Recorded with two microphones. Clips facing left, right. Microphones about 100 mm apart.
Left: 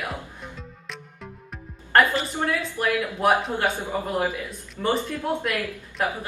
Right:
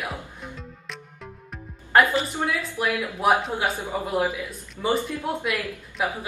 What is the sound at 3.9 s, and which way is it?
Speech, 10° right (ahead or behind).